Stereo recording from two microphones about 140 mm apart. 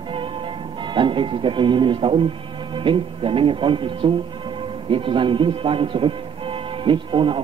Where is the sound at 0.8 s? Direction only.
35° right (ahead or behind).